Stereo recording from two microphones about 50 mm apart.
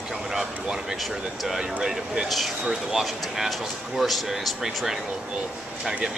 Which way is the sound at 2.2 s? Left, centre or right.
Centre.